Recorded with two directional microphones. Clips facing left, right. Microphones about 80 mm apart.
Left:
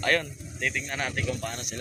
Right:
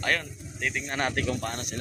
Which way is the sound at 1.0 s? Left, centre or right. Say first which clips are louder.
Right 4 dB; right.